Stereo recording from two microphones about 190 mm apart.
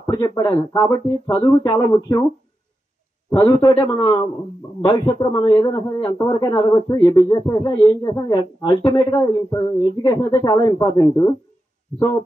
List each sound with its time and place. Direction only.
0.0 s a man's voice: 20° left (ahead or behind)
3.3 s a man's voice: 15° left (ahead or behind)